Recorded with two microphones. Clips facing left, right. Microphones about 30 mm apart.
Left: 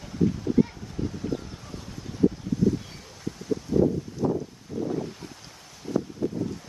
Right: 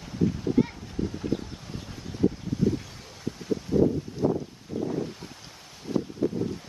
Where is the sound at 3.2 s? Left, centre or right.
Centre.